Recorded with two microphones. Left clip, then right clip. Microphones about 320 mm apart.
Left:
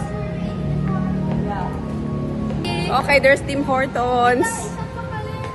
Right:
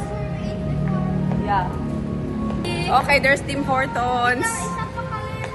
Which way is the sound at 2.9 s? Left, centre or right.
Centre.